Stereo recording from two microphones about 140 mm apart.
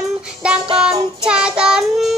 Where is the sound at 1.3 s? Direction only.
5° right (ahead or behind).